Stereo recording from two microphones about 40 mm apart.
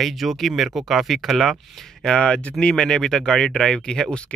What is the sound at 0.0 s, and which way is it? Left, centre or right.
Speech, centre.